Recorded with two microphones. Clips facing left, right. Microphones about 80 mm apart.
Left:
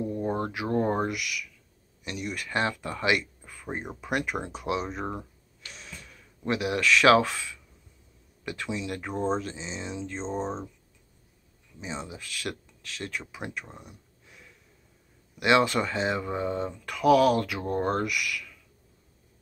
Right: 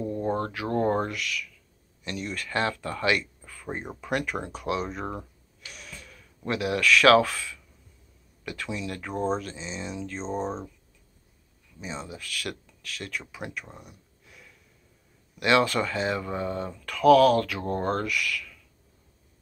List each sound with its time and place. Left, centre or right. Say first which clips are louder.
0.0 s speech: right 1 dB; centre
5.7 s gasp: even; left
6.4 s speech: right 1 dB; left
10.2 s speech: right 1 dB; centre
11.8 s speech: even; left
13.7 s a sound: even; left
15.3 s speech: even; left